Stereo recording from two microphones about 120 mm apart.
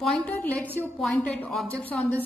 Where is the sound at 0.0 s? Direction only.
5° left (ahead or behind).